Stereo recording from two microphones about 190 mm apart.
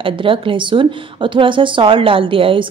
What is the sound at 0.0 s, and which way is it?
A woman's voice, 25° right (ahead or behind).